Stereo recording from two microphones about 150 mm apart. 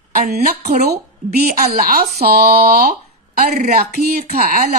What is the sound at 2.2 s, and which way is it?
Speech, 90° right.